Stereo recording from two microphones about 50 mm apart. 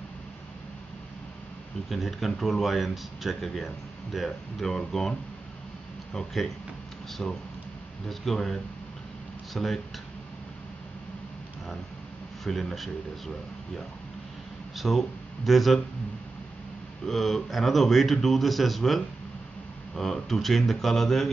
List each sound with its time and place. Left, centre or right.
1.9 s a man's voice: centre
6.1 s speech: centre
7.2 s speech: centre
8.1 s a man's voice: centre
12.4 s a man's voice: centre
14.8 s a man's voice: centre
17.0 s a man's voice: centre